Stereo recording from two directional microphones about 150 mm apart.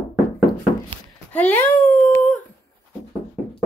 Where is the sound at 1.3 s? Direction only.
10° left (ahead or behind).